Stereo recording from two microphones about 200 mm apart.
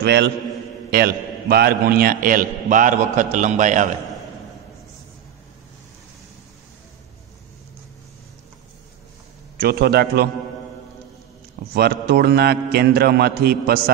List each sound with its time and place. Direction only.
0.0 s a man's voice: 55° right (ahead or behind); by 3.9 s 40° right (ahead or behind)
9.6 s a man's voice: 50° right (ahead or behind)
11.7 s a man's voice: 50° right (ahead or behind)